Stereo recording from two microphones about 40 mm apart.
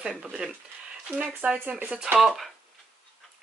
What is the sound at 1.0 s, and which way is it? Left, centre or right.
Speech, right.